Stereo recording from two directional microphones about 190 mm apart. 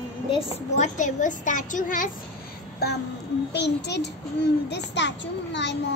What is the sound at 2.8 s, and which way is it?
Child singing, 55° left (ahead or behind).